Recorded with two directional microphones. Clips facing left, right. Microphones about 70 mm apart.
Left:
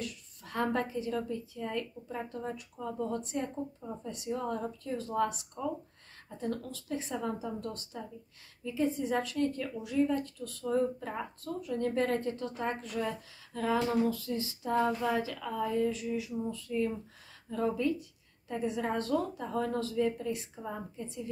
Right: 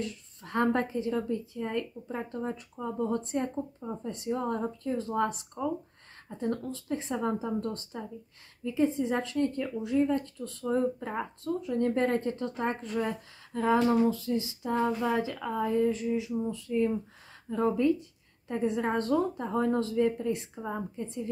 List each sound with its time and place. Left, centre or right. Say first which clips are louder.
0.0 s a woman's voice: right 4 dB; right
3.1 s a woman's voice: right 4 dB; right
6.4 s a woman's voice: right 4 dB; right